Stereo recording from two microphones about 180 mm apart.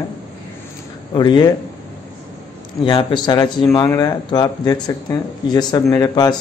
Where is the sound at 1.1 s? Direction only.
25° left (ahead or behind).